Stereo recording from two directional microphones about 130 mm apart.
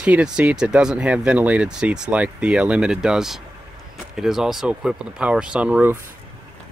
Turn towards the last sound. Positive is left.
turn(degrees=-10)  # may be behind; listen again after turning